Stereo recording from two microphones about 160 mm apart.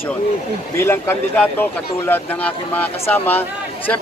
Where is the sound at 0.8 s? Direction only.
15° left (ahead or behind).